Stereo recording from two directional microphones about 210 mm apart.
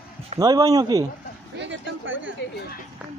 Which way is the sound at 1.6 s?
60° right (ahead or behind).